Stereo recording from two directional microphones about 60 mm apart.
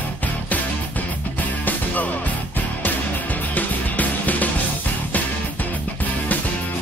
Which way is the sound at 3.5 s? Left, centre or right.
Left.